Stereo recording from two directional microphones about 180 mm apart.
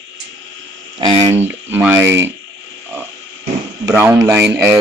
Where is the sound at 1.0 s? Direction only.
30° right (ahead or behind).